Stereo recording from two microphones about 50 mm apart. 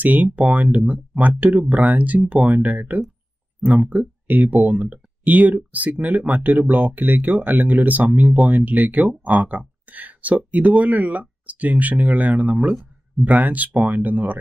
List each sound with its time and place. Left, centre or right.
0.0 s speech: right